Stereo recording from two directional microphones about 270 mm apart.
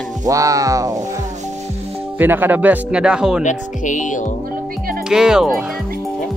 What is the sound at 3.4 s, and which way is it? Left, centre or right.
Speech, left.